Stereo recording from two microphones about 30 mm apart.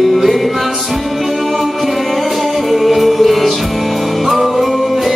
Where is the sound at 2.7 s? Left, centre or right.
Centre.